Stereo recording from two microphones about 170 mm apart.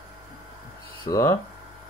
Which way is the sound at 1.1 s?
15° left (ahead or behind).